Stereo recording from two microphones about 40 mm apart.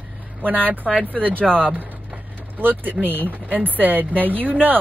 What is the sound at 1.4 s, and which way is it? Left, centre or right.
Speech, left.